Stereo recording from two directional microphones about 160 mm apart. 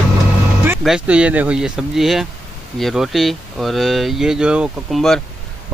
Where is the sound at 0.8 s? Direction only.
5° right (ahead or behind).